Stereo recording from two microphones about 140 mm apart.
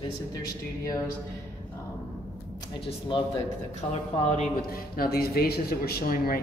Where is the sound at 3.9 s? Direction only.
55° left (ahead or behind).